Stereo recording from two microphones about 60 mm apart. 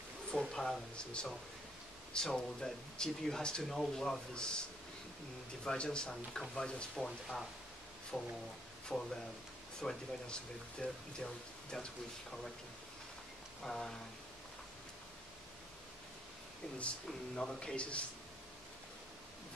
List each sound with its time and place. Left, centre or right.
0.3 s speech: centre
13.6 s a sound: centre
17.4 s speech: centre